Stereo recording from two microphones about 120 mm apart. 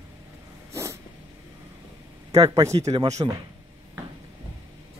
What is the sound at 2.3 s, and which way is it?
Speech, 30° right (ahead or behind).